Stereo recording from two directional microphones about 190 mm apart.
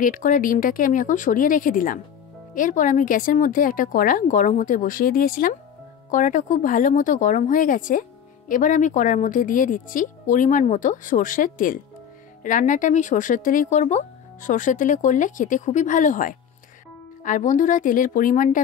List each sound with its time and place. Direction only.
0.0 s speech: 45° left (ahead or behind)